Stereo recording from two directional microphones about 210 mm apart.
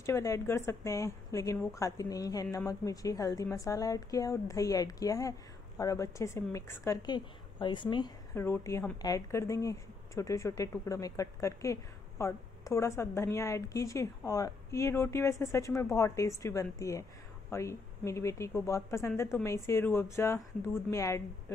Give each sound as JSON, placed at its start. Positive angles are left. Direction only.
{"t": 0.0, "sound": "a woman's voice", "side_deg": 15}